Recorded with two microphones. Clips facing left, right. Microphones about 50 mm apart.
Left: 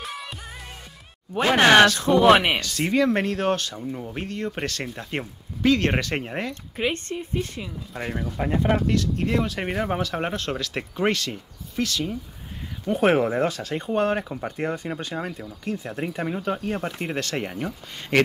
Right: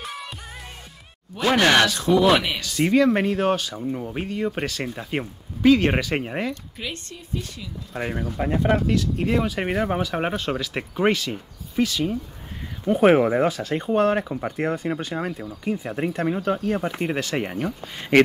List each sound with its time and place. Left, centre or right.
0.0 s music: centre
1.6 s speech: left
2.0 s speech: left
2.6 s speech: centre
6.5 s speech: left
7.9 s speech: centre
16.3 s speech: centre